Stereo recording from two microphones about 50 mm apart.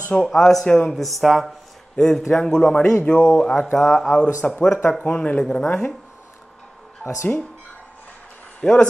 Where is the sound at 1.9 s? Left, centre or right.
Centre.